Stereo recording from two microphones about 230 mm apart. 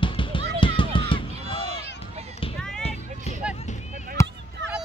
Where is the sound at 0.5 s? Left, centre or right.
Left.